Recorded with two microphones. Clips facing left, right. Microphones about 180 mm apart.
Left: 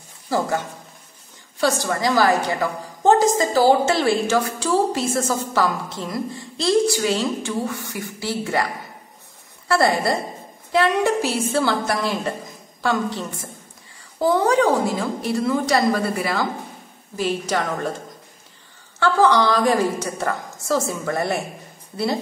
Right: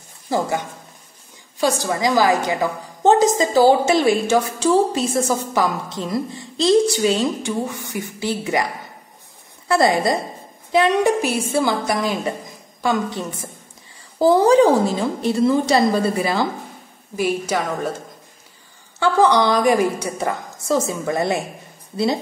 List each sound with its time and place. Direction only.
0.3 s a woman's voice: 15° right (ahead or behind)
9.7 s a woman's voice: 20° right (ahead or behind)
14.1 s a woman's voice: 30° right (ahead or behind)
17.2 s a woman's voice: 10° right (ahead or behind)
18.9 s a woman's voice: 15° right (ahead or behind)